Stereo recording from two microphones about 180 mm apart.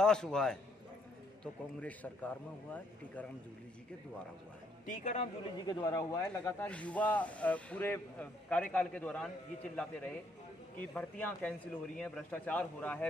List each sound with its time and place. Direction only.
0.0 s a man's voice: 5° left (ahead or behind)
4.8 s a man's voice: 40° left (ahead or behind)
5.7 s speech: 20° left (ahead or behind)